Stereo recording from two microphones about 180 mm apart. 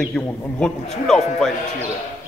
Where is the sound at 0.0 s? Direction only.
5° left (ahead or behind).